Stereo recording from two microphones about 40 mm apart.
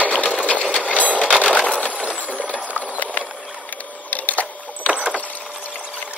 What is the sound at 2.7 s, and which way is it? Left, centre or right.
Clip-clop, left.